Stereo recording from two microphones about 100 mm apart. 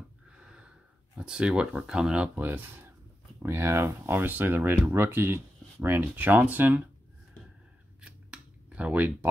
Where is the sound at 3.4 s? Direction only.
25° right (ahead or behind).